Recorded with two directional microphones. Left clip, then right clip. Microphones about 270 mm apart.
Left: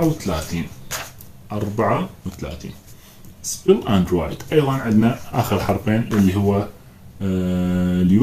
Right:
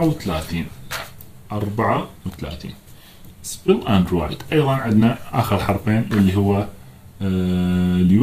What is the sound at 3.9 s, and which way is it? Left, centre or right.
Speech, right.